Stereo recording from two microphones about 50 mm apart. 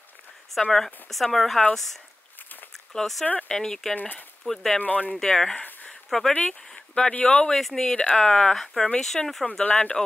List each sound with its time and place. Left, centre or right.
0.6 s speech: centre
2.9 s speech: centre
4.7 s speech: left
5.1 s speech: centre
6.7 s a sound: centre
7.2 s speech: centre
7.9 s speech: left; by 9.5 s centre
9.5 s speech: left